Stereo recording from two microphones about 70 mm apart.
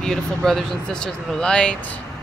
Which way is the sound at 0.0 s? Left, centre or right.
Centre.